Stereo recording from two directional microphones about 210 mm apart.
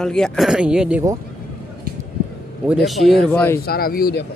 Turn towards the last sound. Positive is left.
turn(degrees=45)  # may be behind; listen again after turning